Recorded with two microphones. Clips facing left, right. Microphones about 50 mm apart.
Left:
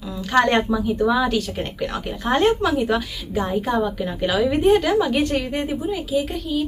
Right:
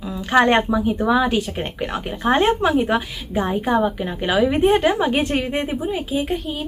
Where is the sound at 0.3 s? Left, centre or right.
Right.